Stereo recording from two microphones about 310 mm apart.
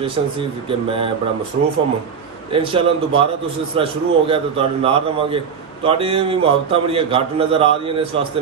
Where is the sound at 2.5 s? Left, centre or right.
Centre.